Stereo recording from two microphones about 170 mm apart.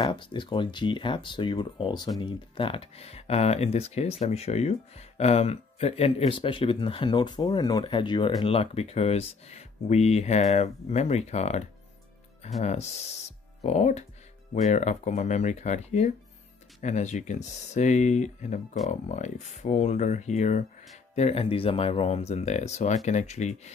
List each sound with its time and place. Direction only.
0.0 s speech: 30° left (ahead or behind)
13.6 s speech: 40° left (ahead or behind)